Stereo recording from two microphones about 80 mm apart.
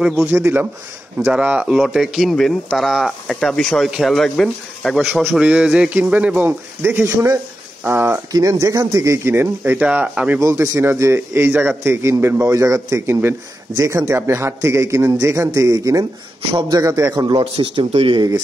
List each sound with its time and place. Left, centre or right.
0.0 s speech: centre
0.3 s speech: right
1.8 s speech: centre
5.4 s speech: centre
8.3 s speech: right
9.3 s speech: right
10.4 s a man's voice: right
17.4 s speech: right